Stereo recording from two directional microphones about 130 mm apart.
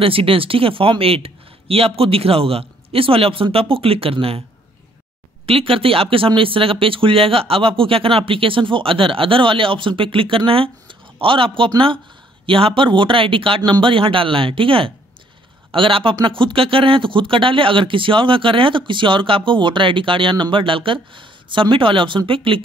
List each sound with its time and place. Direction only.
0.0 s speech: 45° right (ahead or behind)
5.5 s speech: 45° right (ahead or behind)